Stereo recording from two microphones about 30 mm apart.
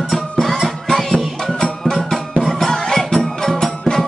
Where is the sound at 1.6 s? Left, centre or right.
Centre.